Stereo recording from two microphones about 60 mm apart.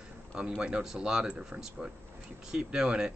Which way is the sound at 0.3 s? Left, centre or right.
Centre.